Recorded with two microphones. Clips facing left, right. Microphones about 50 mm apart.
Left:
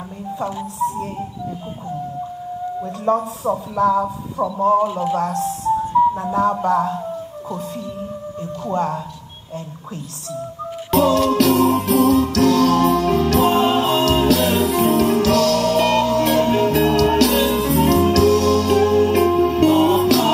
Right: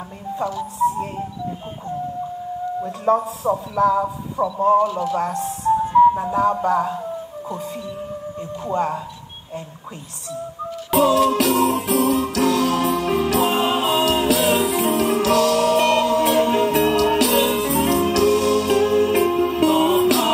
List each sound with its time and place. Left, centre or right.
2.8 s a man's voice: centre
4.7 s speech: centre
5.2 s music: centre
6.1 s speech: centre
8.4 s speech: centre
10.9 s a man's voice: centre
11.7 s music: centre